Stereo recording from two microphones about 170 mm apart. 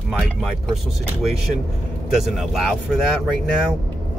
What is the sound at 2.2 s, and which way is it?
Speech, centre (ahead or behind).